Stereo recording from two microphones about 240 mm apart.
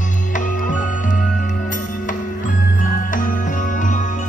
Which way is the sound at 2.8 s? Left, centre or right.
Left.